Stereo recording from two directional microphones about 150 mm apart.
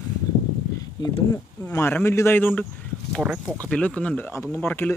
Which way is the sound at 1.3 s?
20° left (ahead or behind).